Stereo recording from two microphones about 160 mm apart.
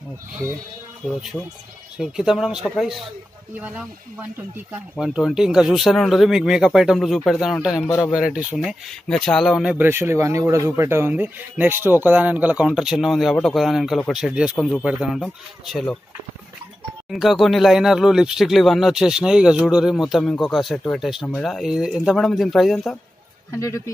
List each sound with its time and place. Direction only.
1.0 s speech: centre (ahead or behind)
17.1 s speech: centre (ahead or behind)
23.5 s speech: 15° left (ahead or behind)